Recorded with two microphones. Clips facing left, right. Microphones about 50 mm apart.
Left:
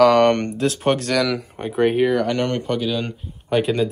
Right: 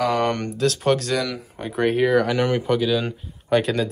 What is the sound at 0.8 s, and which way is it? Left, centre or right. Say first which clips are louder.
Speech: left 1 dB; left.